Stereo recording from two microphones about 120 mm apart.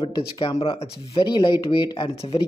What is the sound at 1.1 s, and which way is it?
Speech, 35° left (ahead or behind).